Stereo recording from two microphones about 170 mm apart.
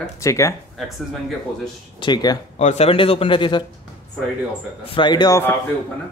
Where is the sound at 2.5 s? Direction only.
40° left (ahead or behind).